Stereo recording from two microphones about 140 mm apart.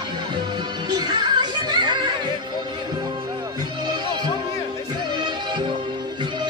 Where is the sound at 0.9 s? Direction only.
30° right (ahead or behind).